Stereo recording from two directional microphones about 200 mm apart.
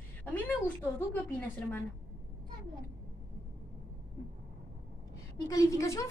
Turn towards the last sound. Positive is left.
turn(degrees=15)  # may be behind; listen again after turning